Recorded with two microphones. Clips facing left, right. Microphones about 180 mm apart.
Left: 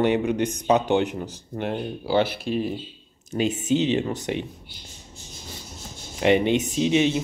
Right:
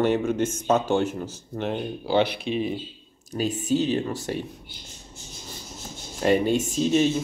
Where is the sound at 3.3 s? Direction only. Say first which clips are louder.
Left 2 dB; 20° left (ahead or behind).